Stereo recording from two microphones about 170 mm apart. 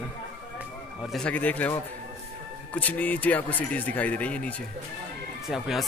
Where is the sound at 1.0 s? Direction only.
5° left (ahead or behind).